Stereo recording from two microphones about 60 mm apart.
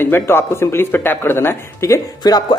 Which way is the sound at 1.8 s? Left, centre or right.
Left.